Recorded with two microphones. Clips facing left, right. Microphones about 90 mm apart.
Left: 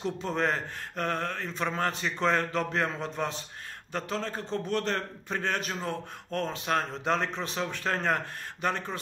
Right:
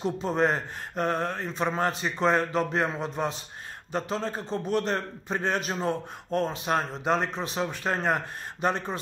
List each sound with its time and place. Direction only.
0.0 s a man's voice: 15° right (ahead or behind)